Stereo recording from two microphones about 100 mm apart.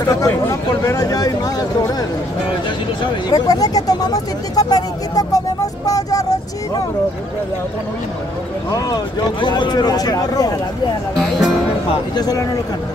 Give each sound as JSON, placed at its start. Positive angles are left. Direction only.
{"t": 0.0, "sound": "speech", "side_deg": 30}
{"t": 3.3, "sound": "speech", "side_deg": 40}
{"t": 8.7, "sound": "speech", "side_deg": 50}
{"t": 11.1, "sound": "speech", "side_deg": 0}
{"t": 12.2, "sound": "speech", "side_deg": 40}